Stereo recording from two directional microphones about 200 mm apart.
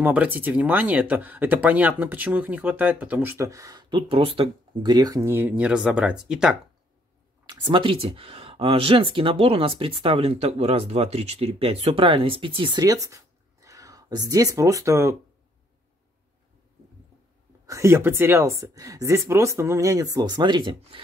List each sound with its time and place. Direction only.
0.0 s speech: 10° right (ahead or behind)
7.4 s speech: 25° right (ahead or behind)
17.6 s speech: 15° right (ahead or behind)